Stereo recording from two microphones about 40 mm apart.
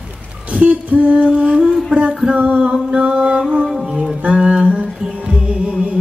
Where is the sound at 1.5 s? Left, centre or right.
Centre.